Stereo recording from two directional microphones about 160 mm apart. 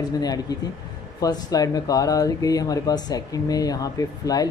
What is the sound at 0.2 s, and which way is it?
Speech, 25° left (ahead or behind).